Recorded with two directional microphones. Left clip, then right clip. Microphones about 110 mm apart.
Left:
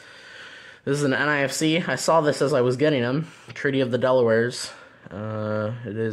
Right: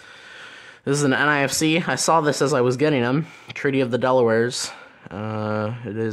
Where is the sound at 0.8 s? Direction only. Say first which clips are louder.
Right 3 dB; 45° right (ahead or behind).